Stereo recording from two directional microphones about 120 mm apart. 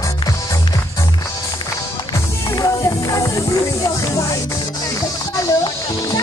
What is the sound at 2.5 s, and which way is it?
Music, 30° left (ahead or behind).